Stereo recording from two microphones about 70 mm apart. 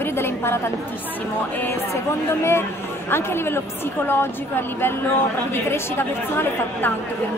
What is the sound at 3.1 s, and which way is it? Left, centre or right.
A woman's voice, left.